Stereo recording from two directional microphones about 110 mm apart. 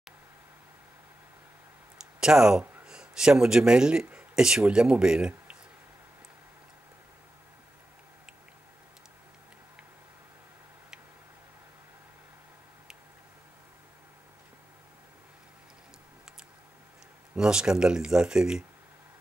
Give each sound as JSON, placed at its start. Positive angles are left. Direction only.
{"t": 2.1, "sound": "speech", "side_deg": -5}
{"t": 2.6, "sound": "a sound", "side_deg": -20}
{"t": 2.9, "sound": "speech", "side_deg": -5}
{"t": 17.4, "sound": "speech", "side_deg": -5}